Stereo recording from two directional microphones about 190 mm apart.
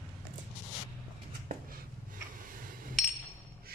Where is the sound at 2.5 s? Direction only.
45° right (ahead or behind).